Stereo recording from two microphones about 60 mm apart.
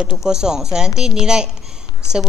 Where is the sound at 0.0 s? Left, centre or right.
Centre.